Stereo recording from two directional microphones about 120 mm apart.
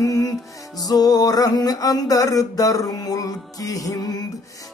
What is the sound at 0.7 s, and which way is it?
Music, 30° left (ahead or behind).